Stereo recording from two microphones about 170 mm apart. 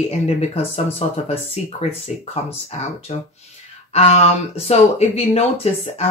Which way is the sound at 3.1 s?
35° left (ahead or behind).